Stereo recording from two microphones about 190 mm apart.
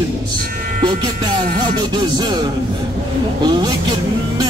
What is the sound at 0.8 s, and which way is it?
A man's voice, 25° right (ahead or behind).